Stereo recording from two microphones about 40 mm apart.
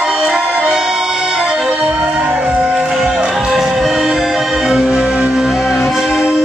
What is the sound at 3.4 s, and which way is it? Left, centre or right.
Music, centre.